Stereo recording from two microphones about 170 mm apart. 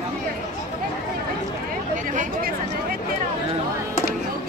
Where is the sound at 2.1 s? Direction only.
50° right (ahead or behind).